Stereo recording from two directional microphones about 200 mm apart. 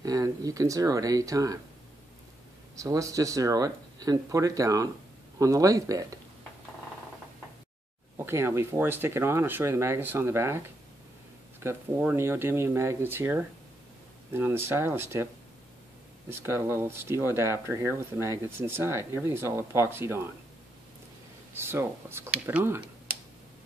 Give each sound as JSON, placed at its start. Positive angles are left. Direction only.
{"t": 0.0, "sound": "speech", "side_deg": -20}
{"t": 2.7, "sound": "speech", "side_deg": -15}
{"t": 8.2, "sound": "speech", "side_deg": -10}
{"t": 11.6, "sound": "speech", "side_deg": -10}
{"t": 16.3, "sound": "speech", "side_deg": -10}
{"t": 21.5, "sound": "speech", "side_deg": -10}